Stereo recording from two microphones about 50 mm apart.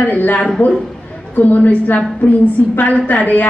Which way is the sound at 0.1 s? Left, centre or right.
Left.